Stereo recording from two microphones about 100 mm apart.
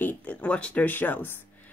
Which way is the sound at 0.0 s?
15° left (ahead or behind).